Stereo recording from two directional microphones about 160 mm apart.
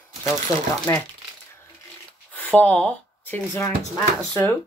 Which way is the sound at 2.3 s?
10° left (ahead or behind).